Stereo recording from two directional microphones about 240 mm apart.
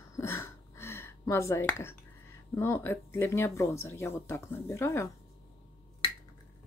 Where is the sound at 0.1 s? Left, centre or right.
Centre.